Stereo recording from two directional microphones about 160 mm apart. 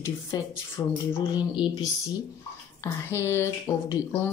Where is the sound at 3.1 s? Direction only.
15° left (ahead or behind).